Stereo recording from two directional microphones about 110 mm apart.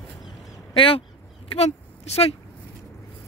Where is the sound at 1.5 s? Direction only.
75° left (ahead or behind).